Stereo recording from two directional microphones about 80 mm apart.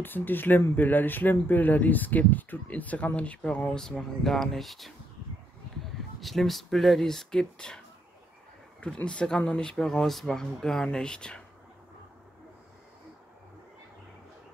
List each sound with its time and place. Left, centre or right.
0.0 s speech: left; by 4.9 s centre
6.2 s speech: centre
8.8 s speech: centre